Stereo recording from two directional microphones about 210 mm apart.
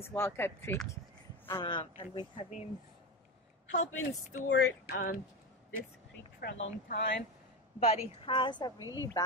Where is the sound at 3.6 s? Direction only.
65° left (ahead or behind).